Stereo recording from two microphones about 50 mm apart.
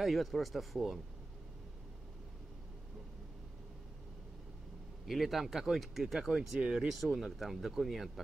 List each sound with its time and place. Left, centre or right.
0.0 s speech: centre
5.0 s speech: centre
6.1 s speech: centre
6.9 s speech: centre